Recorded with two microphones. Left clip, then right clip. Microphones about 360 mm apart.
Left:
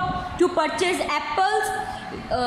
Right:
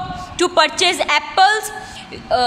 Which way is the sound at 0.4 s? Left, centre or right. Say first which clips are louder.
Right 7 dB; right.